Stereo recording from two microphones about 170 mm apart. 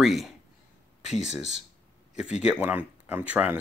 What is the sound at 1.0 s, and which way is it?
Speech, 40° left (ahead or behind).